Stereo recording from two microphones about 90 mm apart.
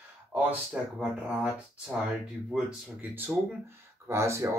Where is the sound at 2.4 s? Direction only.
10° right (ahead or behind).